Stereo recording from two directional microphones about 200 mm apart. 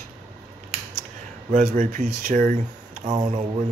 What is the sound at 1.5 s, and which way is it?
Speech, 40° right (ahead or behind).